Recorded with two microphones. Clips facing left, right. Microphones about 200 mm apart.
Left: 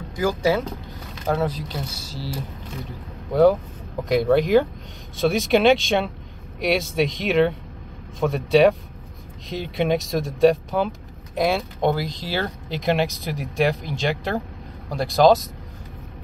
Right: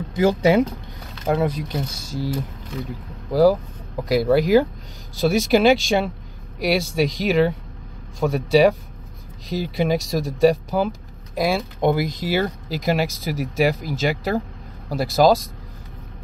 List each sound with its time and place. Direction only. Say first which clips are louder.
0.1 s speech: right 4 dB; 25° right (ahead or behind)
2.0 s speech: right 6 dB; 50° right (ahead or behind)
3.3 s speech: even; centre (ahead or behind)